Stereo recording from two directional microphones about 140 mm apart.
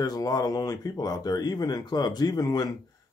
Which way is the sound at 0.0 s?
25° left (ahead or behind).